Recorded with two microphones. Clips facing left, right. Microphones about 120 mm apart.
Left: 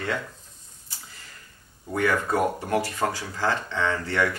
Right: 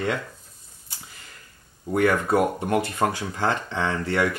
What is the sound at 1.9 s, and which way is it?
Speech, 20° right (ahead or behind).